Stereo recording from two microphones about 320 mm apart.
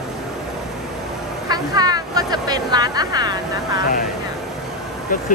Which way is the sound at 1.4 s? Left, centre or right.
Centre.